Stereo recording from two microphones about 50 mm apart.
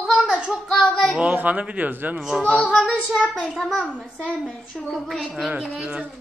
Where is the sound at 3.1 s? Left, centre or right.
Centre.